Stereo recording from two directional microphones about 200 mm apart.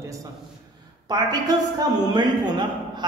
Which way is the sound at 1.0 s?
20° right (ahead or behind).